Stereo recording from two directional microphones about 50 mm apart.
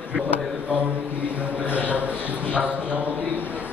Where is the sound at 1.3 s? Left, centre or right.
Right.